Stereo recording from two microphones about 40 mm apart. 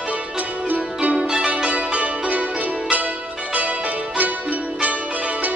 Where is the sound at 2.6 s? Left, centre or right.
Right.